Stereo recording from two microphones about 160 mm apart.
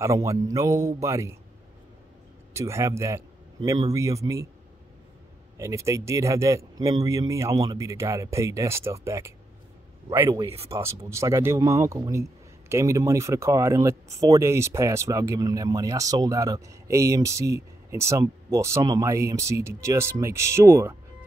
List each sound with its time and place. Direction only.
0.0 s a man's voice: 20° right (ahead or behind)
2.5 s a man's voice: 20° right (ahead or behind)
5.6 s a man's voice: 20° right (ahead or behind)